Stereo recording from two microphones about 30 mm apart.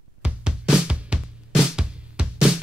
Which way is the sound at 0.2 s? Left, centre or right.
Right.